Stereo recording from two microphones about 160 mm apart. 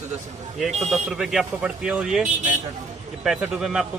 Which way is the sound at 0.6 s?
Centre (ahead or behind).